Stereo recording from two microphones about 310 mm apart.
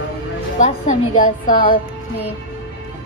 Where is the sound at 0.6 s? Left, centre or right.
Left.